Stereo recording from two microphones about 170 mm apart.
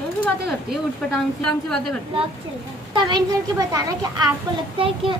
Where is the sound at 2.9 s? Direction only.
25° right (ahead or behind).